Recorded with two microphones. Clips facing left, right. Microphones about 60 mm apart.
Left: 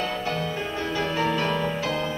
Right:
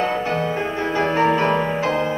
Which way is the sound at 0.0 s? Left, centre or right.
Right.